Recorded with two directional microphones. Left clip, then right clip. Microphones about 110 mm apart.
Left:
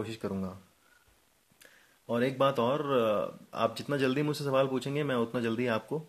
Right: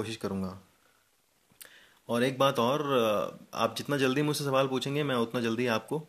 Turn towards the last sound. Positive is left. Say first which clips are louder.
# right 1 dB
turn(degrees=-10)  # may be behind; listen again after turning